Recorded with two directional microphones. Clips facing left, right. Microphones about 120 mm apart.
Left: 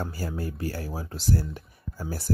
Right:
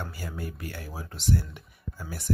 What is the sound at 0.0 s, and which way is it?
Speech, 35° left (ahead or behind).